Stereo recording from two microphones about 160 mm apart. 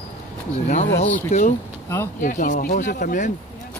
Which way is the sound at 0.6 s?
45° left (ahead or behind).